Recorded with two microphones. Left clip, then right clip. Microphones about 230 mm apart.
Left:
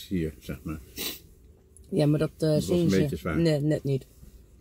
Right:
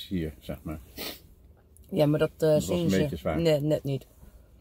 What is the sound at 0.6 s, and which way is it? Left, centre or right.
Speech, left.